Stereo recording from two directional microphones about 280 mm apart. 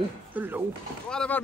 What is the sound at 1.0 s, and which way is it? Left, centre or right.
Speech, centre.